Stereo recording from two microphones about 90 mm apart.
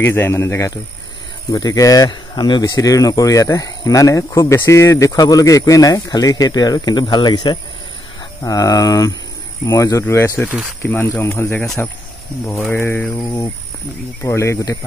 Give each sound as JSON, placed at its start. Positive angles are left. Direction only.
{"t": 0.0, "sound": "speech", "side_deg": 25}
{"t": 2.0, "sound": "speech", "side_deg": 55}
{"t": 2.7, "sound": "speech", "side_deg": 40}
{"t": 8.4, "sound": "speech", "side_deg": 40}
{"t": 12.4, "sound": "speech", "side_deg": 15}
{"t": 14.2, "sound": "speech", "side_deg": 30}